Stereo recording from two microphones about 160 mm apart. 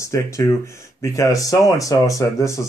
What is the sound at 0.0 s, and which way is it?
Speech, 20° left (ahead or behind).